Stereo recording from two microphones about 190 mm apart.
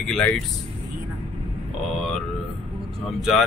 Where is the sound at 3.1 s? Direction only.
Centre (ahead or behind).